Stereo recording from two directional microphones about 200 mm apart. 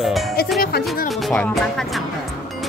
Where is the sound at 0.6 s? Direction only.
50° left (ahead or behind).